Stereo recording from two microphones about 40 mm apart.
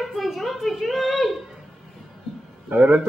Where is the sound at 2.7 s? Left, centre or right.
Right.